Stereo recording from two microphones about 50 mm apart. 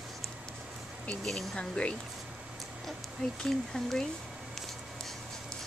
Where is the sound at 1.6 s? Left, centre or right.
Left.